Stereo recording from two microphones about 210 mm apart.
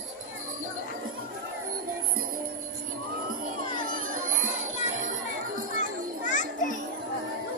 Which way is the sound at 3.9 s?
40° right (ahead or behind).